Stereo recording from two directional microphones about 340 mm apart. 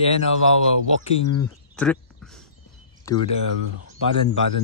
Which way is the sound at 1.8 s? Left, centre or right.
Centre.